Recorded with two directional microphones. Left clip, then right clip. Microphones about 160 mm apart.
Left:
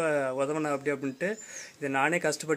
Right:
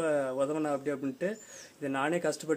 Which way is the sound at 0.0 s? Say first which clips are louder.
Left 2 dB; 20° left (ahead or behind).